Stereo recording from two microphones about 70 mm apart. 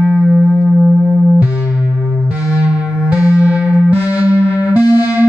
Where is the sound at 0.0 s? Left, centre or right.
Centre.